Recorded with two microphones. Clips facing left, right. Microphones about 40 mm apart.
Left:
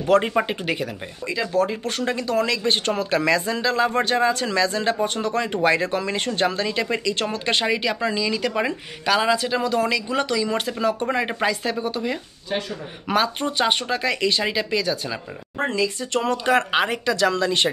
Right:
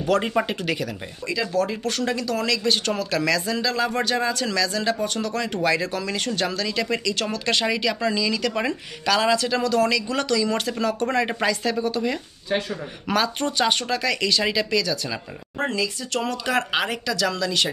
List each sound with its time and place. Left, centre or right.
0.2 s speech: centre; by 17.6 s left